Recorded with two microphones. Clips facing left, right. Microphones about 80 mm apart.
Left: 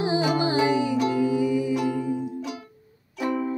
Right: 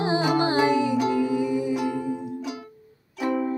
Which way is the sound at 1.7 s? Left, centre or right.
Centre.